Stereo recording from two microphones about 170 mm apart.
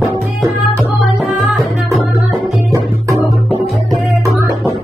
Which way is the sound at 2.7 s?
20° right (ahead or behind).